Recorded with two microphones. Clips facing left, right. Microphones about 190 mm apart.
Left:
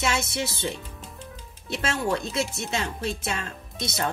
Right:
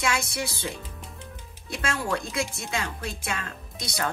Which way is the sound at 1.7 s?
25° left (ahead or behind).